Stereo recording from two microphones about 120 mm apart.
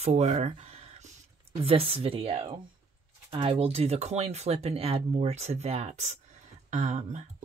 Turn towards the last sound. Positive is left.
turn(degrees=-80)